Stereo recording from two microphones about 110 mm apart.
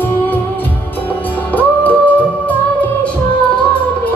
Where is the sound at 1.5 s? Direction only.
15° left (ahead or behind).